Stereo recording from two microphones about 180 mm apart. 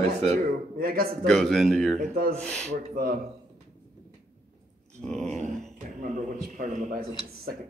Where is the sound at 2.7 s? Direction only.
45° right (ahead or behind).